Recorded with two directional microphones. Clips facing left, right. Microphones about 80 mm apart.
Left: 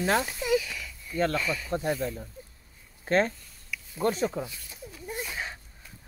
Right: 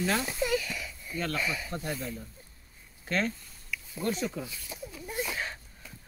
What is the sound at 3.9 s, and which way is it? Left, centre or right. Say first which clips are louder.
Speech: left 5 dB; left.